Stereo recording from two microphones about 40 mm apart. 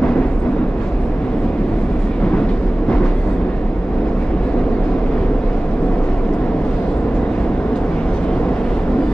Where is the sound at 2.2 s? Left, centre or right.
Left.